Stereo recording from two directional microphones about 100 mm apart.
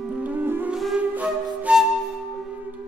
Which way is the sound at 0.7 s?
5° right (ahead or behind).